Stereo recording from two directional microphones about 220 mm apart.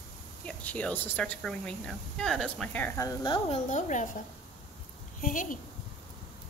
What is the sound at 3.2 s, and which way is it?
Speech, 25° left (ahead or behind).